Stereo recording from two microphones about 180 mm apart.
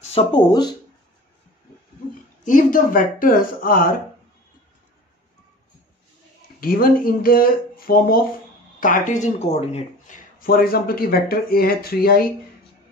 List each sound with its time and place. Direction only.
0.0 s speech: 35° left (ahead or behind)
2.4 s speech: 50° left (ahead or behind)
6.6 s speech: 55° left (ahead or behind)